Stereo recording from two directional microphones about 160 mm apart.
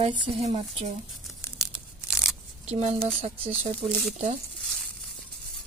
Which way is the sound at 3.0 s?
35° right (ahead or behind).